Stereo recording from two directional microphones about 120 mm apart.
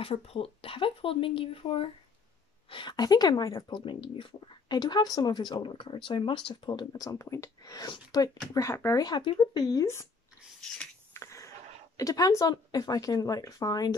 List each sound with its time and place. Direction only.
0.0 s a woman's voice: 55° left (ahead or behind); by 9.0 s 25° left (ahead or behind)
9.0 s a woman's voice: 40° left (ahead or behind)
11.1 s a sound: 25° left (ahead or behind)
12.0 s a woman's voice: 30° left (ahead or behind)